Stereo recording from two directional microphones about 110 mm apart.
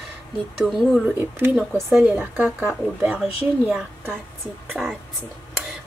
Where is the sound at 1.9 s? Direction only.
15° right (ahead or behind).